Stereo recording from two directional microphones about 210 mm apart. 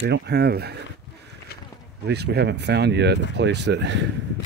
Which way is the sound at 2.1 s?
50° right (ahead or behind).